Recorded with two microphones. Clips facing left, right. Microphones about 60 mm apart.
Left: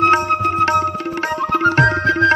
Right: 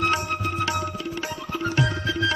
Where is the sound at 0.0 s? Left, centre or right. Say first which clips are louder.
Left 10 dB; left.